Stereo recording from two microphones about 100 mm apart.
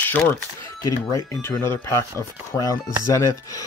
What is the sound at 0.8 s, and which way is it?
Speech, 35° left (ahead or behind).